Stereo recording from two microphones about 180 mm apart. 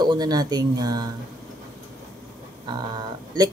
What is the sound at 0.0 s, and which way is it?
Speech, 25° right (ahead or behind).